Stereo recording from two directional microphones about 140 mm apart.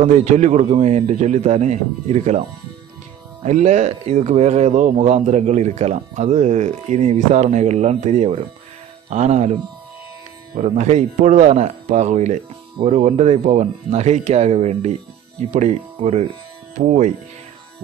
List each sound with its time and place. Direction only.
0.0 s a man's voice: 55° right (ahead or behind)
3.4 s a man's voice: 55° right (ahead or behind)
10.5 s a man's voice: 55° right (ahead or behind)